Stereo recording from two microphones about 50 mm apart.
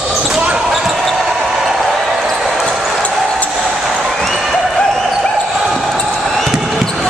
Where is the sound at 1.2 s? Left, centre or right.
Centre.